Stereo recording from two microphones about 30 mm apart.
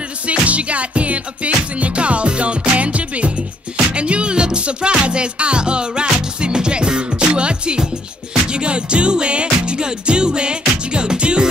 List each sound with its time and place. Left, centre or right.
0.3 s music: right